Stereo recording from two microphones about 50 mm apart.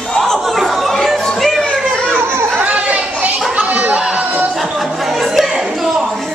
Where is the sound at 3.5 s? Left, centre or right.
Right.